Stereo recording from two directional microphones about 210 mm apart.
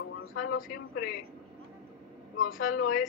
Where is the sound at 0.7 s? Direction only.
45° left (ahead or behind).